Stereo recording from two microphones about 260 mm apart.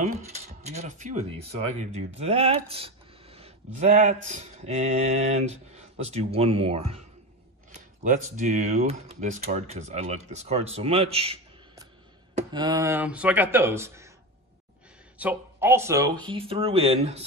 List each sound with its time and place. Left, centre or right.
0.0 s mechanisms: right
1.8 s speech: right
8.0 s speech: right; by 14.1 s centre
15.1 s speech: centre; by 17.2 s right